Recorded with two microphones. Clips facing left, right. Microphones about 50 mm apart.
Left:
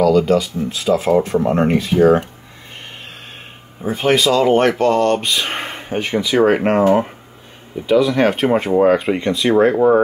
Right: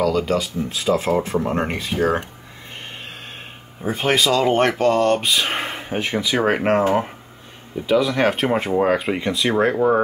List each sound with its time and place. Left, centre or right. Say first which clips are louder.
0.0 s speech: left 6 dB; centre
3.8 s speech: left 4 dB; centre